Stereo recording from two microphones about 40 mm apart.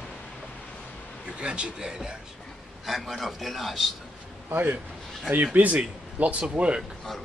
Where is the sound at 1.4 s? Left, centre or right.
Right.